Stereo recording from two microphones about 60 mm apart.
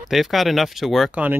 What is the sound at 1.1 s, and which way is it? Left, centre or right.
Speech, right.